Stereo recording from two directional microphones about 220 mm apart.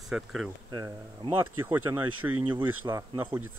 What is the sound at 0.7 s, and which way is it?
Speech, 15° right (ahead or behind).